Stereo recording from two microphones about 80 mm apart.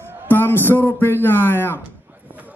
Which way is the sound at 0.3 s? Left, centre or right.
Left.